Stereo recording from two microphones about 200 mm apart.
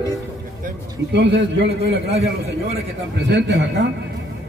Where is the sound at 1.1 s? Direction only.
60° right (ahead or behind).